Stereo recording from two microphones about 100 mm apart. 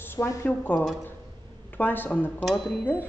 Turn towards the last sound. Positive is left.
turn(degrees=20)  # may be behind; listen again after turning